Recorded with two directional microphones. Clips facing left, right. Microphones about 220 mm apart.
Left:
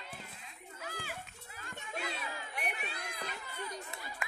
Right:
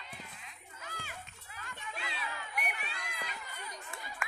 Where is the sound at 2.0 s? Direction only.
45° left (ahead or behind).